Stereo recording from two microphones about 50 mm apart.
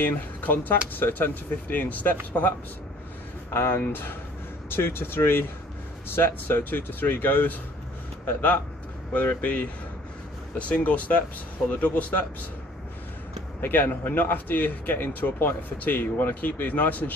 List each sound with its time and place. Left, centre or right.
0.0 s speech: left
3.4 s speech: left
10.6 s speech: left
13.6 s speech: left